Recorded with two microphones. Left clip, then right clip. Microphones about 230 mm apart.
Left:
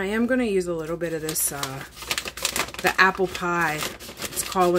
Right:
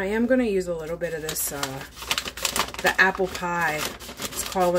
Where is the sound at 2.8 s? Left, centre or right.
Left.